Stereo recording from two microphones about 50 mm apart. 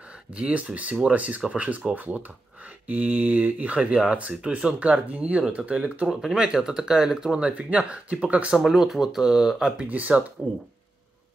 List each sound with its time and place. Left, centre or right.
0.1 s speech: right
6.0 s speech: centre
8.5 s speech: centre
9.8 s speech: right